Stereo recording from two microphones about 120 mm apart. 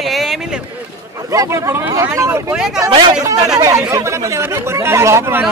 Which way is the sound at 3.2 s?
30° right (ahead or behind).